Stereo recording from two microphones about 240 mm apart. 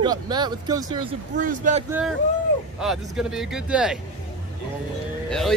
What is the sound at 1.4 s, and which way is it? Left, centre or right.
Speech, right.